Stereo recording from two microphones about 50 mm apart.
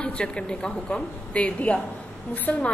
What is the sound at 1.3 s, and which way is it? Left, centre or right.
Speech, left.